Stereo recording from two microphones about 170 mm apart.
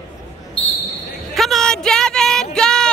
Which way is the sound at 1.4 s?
Centre (ahead or behind).